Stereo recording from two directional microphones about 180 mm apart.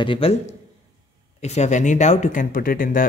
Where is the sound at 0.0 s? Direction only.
30° left (ahead or behind).